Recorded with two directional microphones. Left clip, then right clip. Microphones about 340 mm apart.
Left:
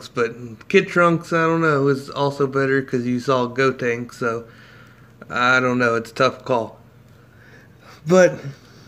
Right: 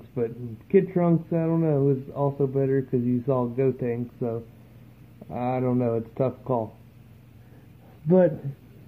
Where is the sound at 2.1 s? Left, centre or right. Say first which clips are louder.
Left 5 dB; centre.